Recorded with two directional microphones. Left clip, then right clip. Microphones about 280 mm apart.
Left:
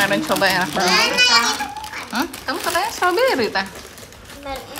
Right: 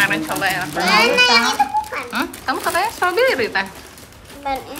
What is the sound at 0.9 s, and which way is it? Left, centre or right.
Speech, centre.